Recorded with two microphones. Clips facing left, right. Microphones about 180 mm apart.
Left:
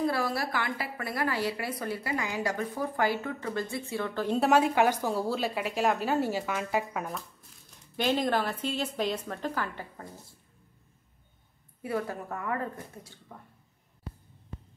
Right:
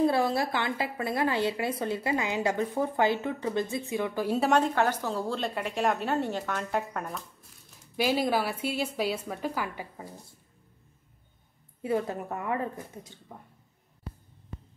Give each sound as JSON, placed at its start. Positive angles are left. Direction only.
{"t": 0.0, "sound": "a woman's voice", "side_deg": -25}
{"t": 4.4, "sound": "a woman's voice", "side_deg": 5}
{"t": 11.8, "sound": "a woman's voice", "side_deg": -20}